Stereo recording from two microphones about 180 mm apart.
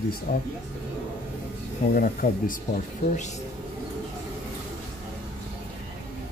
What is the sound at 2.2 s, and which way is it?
Speech, 55° left (ahead or behind).